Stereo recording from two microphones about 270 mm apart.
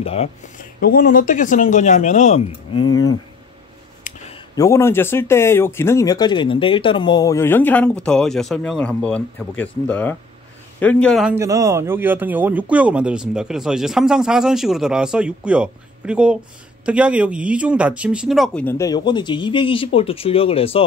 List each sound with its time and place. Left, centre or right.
0.0 s speech: left
2.7 s speech: left
4.1 s a sound: left
4.6 s a man's voice: centre